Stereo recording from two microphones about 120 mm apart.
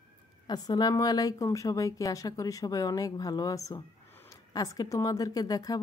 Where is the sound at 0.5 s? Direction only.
35° left (ahead or behind).